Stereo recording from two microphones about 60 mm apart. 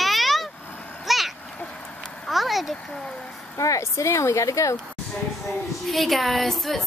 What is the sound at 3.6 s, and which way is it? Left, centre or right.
Speech, left.